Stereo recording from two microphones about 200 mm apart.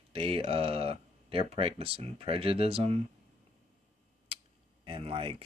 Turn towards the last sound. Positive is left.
turn(degrees=-30)  # may be behind; listen again after turning